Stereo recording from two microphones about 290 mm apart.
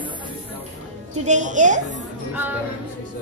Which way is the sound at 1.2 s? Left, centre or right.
Right.